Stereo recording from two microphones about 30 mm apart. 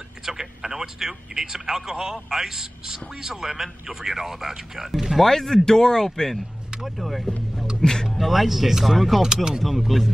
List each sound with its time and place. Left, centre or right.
0.2 s speech: centre
2.2 s a man's voice: centre
5.2 s speech: centre
7.0 s speech: centre
7.8 s speech: centre
8.2 s a man's voice: centre
9.2 s speech: right
9.6 s speech: centre